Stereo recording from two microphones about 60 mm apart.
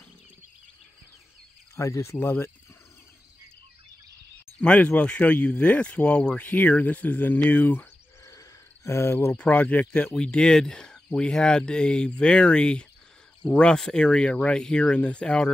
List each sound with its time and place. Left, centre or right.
1.8 s speech: left
4.6 s speech: left
8.8 s speech: left
9.4 s speech: left
10.1 s speech: centre